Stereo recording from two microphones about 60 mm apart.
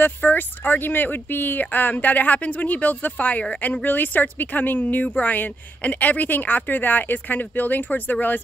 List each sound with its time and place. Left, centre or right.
0.0 s speech: left